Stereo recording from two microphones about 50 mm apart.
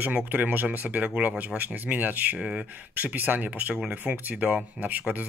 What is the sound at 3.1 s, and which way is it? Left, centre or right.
Speech, right.